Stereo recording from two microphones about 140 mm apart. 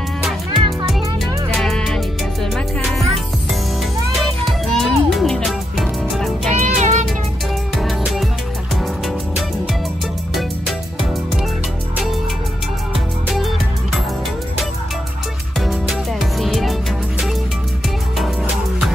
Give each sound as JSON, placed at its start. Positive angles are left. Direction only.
{"t": 0.8, "sound": "music", "side_deg": 0}
{"t": 4.2, "sound": "music", "side_deg": 0}
{"t": 6.5, "sound": "music", "side_deg": -60}
{"t": 8.0, "sound": "music", "side_deg": -5}
{"t": 15.6, "sound": "music", "side_deg": 0}